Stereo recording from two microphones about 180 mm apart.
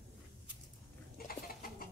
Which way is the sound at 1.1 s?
55° left (ahead or behind).